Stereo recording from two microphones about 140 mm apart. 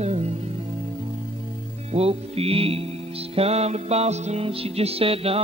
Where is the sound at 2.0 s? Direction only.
45° right (ahead or behind).